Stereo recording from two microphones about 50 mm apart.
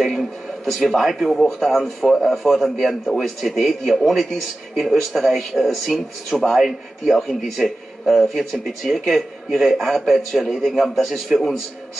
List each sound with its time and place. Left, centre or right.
0.0 s a sound: centre
0.7 s a man's voice: centre
1.3 s speech: centre
1.7 s a man's voice: centre